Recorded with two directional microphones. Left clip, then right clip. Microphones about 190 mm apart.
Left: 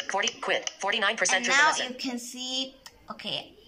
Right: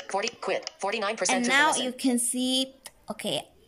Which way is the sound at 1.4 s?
30° right (ahead or behind).